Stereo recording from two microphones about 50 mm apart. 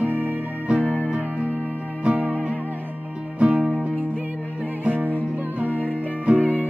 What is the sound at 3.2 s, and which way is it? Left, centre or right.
Music, right.